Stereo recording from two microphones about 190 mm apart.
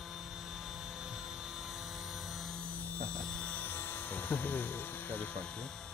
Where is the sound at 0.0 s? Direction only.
Centre (ahead or behind).